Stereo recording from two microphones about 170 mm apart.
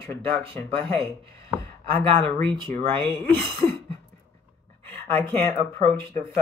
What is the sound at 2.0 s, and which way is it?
Speech, 30° right (ahead or behind).